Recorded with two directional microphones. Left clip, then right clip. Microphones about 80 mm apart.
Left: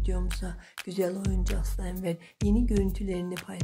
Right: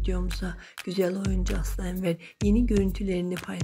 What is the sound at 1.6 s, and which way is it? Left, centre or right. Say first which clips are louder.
Music: right 4 dB; right.